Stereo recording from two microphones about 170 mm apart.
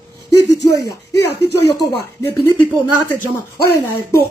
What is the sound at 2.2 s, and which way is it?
Speech, 15° left (ahead or behind).